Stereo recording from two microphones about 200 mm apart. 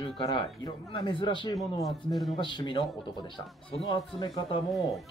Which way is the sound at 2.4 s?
25° left (ahead or behind).